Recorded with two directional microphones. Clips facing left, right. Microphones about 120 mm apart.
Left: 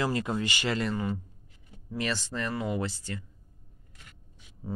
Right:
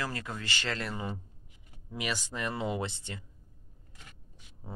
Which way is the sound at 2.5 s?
25° right (ahead or behind).